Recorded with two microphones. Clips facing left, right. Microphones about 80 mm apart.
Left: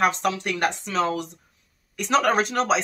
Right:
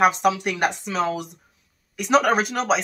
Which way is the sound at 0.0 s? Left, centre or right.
Centre.